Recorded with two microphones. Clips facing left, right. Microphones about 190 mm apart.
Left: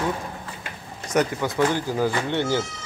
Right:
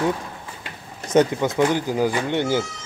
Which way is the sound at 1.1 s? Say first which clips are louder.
Right 4 dB; 20° right (ahead or behind).